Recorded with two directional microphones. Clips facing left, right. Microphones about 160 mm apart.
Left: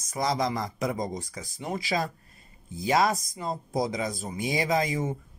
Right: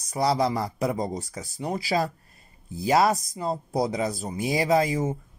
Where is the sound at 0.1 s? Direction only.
35° right (ahead or behind).